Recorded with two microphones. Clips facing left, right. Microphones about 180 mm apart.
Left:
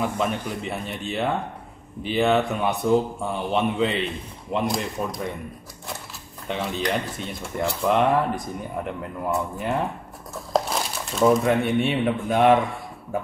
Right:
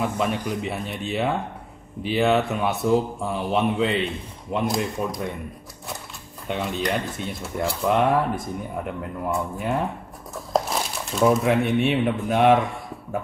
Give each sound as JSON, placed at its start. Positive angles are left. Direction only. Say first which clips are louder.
{"t": 0.0, "sound": "speech", "louder": "right 1 dB", "side_deg": 0}
{"t": 6.4, "sound": "speech", "louder": "even", "side_deg": 0}